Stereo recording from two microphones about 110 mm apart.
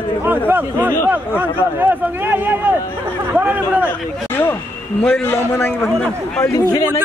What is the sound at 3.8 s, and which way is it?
Speech, 20° left (ahead or behind).